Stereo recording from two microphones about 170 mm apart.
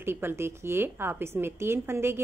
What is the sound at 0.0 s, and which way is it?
Speech, 15° right (ahead or behind).